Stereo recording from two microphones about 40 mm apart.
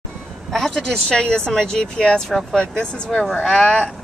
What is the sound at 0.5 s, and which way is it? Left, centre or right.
A woman's voice, centre.